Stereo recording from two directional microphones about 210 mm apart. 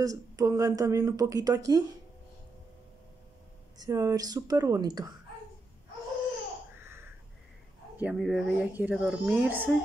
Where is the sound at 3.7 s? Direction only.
15° right (ahead or behind).